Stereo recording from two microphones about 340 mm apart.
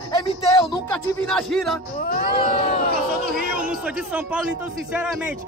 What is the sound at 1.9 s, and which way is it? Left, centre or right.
Speech, left.